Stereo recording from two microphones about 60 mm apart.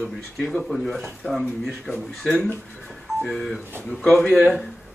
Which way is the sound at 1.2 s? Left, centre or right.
Left.